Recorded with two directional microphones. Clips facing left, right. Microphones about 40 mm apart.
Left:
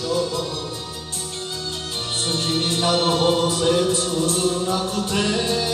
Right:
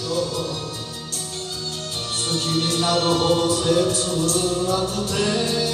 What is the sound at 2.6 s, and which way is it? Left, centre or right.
Music, left.